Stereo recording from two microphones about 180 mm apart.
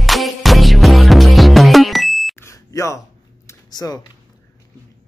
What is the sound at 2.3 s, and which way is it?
Smoke detector, 15° left (ahead or behind).